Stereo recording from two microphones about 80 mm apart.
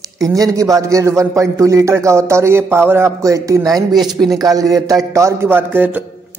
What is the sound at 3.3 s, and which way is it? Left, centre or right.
Speech, right.